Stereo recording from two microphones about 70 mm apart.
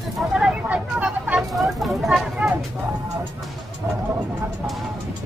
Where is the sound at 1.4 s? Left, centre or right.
Centre.